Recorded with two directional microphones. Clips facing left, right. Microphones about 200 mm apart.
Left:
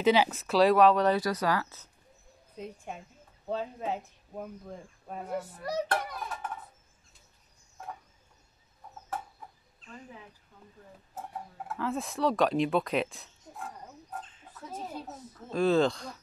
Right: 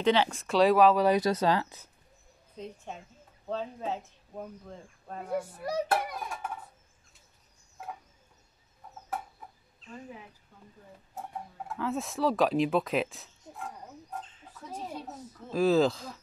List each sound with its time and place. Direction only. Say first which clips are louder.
0.0 s speech: left 1 dB; 10° left (ahead or behind)
1.1 s speech: right 3 dB; 25° right (ahead or behind)
2.5 s speech: left 1 dB; 10° left (ahead or behind)
5.6 s a child's voice: right 1 dB; 10° right (ahead or behind)
9.8 s a sound: right 3 dB; 50° left (ahead or behind)
11.1 s speech: right 1 dB; centre (ahead or behind)
14.1 s chicken: right 1 dB; centre (ahead or behind)
15.5 s speech: right 1 dB; centre (ahead or behind)